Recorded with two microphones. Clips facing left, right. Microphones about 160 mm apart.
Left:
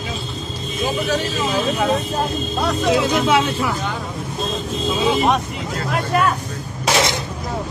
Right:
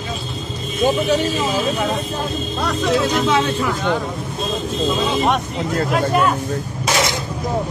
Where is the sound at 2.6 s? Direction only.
10° left (ahead or behind).